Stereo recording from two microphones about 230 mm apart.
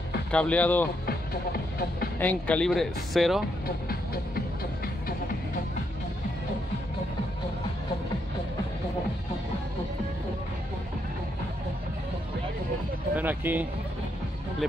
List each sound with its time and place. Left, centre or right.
0.3 s speech: centre
1.0 s music: left
2.1 s speech: centre
3.6 s music: left
13.1 s speech: centre